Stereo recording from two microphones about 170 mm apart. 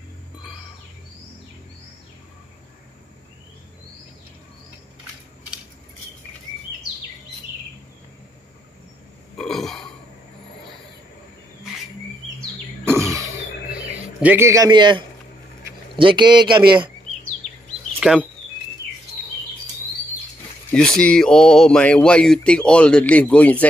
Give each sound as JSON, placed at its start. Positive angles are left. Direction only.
{"t": 9.4, "sound": "burping", "side_deg": 0}
{"t": 12.8, "sound": "a sound", "side_deg": -15}
{"t": 13.7, "sound": "a man's voice", "side_deg": -10}
{"t": 18.0, "sound": "speech", "side_deg": -5}
{"t": 20.7, "sound": "speech", "side_deg": 5}